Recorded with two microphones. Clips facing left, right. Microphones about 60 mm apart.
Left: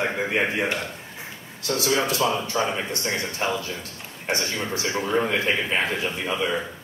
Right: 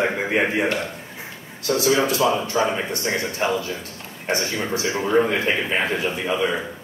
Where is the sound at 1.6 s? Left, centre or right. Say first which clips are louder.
Right 4 dB; right.